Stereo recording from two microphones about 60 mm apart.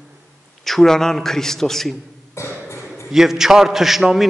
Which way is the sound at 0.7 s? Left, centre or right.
Centre.